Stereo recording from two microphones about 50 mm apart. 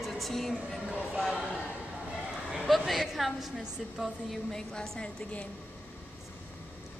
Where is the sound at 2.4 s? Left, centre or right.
Centre.